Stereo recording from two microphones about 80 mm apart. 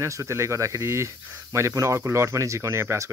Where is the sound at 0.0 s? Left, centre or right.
Right.